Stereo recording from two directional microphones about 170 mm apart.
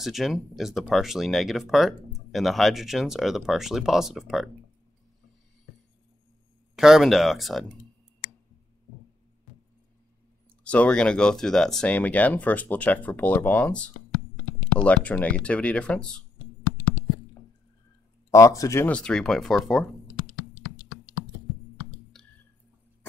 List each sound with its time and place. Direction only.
0.0 s speech: centre (ahead or behind)
6.7 s speech: centre (ahead or behind)
10.6 s speech: 5° left (ahead or behind)
16.6 s a sound: 10° right (ahead or behind)
18.3 s speech: 20° left (ahead or behind)
18.9 s speech: 5° left (ahead or behind)
22.2 s music: 5° left (ahead or behind)